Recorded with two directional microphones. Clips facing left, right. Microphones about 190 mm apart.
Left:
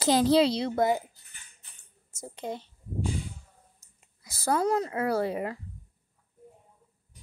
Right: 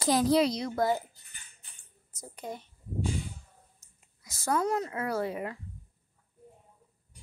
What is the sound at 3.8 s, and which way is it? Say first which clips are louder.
Speech: left 2 dB; 35° left (ahead or behind).